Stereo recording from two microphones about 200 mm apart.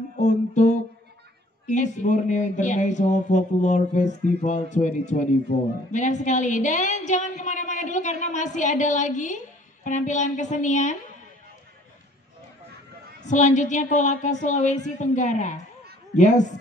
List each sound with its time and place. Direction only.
0.2 s music: 35° left (ahead or behind)
1.7 s speech: 35° left (ahead or behind)
13.2 s speech: 35° left (ahead or behind)